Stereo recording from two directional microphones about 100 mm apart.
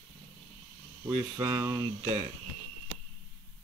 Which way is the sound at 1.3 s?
30° right (ahead or behind).